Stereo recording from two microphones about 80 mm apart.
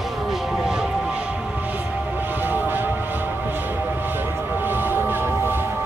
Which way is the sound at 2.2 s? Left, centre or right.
Right.